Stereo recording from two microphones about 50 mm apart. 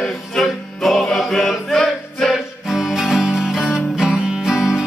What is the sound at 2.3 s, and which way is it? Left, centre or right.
Music, centre.